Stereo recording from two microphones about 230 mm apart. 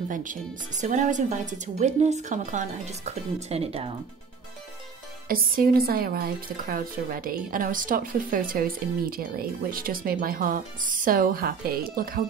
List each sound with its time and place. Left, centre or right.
0.1 s speech: right
5.3 s speech: right